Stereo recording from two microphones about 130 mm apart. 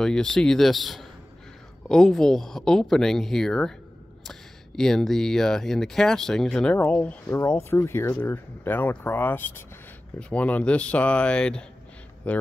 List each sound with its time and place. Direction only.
0.0 s speech: 5° left (ahead or behind)
7.3 s speech: 20° left (ahead or behind)